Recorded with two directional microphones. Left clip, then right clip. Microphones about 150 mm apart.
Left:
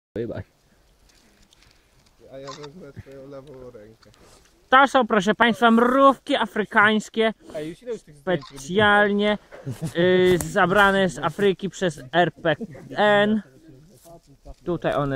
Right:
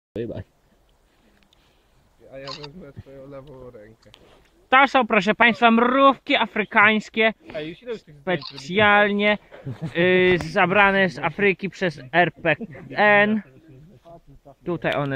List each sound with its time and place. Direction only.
0.1 s speech: 5° right (ahead or behind)
3.2 s speech: 45° left (ahead or behind)
4.6 s speech: 20° right (ahead or behind)
7.5 s speech: 45° left (ahead or behind)
8.2 s speech: 15° right (ahead or behind)
9.7 s speech: 30° left (ahead or behind)
9.9 s speech: 20° right (ahead or behind)
12.5 s speech: 45° left (ahead or behind)
12.9 s speech: 20° right (ahead or behind)
14.1 s snake: 55° left (ahead or behind)
14.6 s speech: 20° right (ahead or behind)